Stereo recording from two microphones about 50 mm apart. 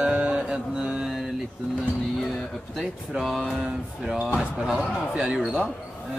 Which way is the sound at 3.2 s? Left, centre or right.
Centre.